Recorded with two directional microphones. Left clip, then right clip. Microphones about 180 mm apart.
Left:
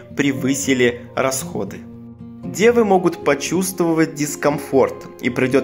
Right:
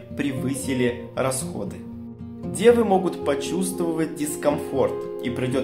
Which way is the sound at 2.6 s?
35° left (ahead or behind).